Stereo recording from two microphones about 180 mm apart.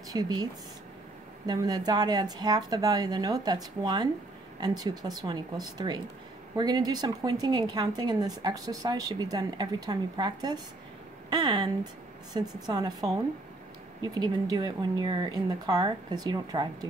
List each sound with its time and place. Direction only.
0.1 s a woman's voice: 20° right (ahead or behind)
14.0 s a woman's voice: 20° right (ahead or behind)